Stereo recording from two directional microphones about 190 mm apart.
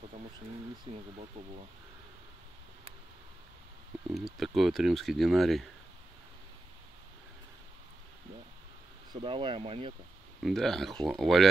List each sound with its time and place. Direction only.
0.9 s speech: 25° right (ahead or behind)
4.1 s speech: centre (ahead or behind)
9.1 s speech: 25° right (ahead or behind)
10.4 s speech: centre (ahead or behind)